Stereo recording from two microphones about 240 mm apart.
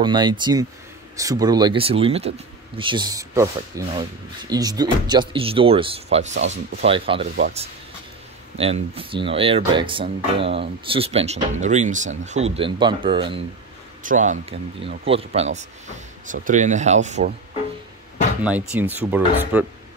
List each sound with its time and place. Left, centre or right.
0.0 s speech: centre
8.5 s speech: right
14.0 s speech: right
18.4 s speech: centre